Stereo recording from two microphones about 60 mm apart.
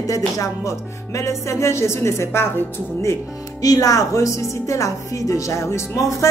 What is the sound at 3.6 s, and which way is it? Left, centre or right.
Speech, left.